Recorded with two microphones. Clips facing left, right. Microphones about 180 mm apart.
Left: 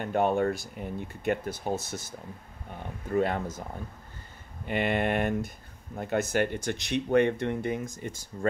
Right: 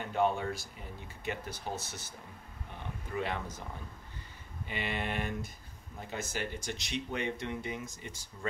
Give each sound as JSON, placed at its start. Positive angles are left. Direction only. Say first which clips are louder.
{"t": 0.0, "sound": "speech", "louder": "left 6 dB", "side_deg": 55}
{"t": 4.6, "sound": "speech", "louder": "left 10 dB", "side_deg": 55}